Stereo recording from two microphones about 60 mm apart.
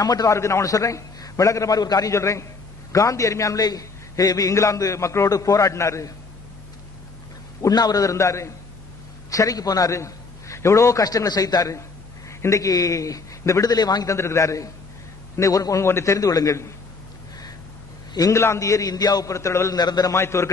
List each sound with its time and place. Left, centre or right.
0.0 s a man's voice: left
0.4 s a man's voice: left
2.1 s a man's voice: left
2.9 s a man's voice: left
7.6 s a man's voice: left
9.3 s a man's voice: left
12.3 s a man's voice: left
14.1 s a man's voice: left
15.3 s a man's voice: left
15.8 s a man's voice: left
18.3 s a man's voice: left
19.3 s a man's voice: left
19.7 s a man's voice: left
20.2 s a man's voice: left